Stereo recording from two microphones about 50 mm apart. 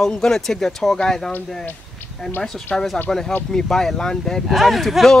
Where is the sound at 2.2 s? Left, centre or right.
Centre.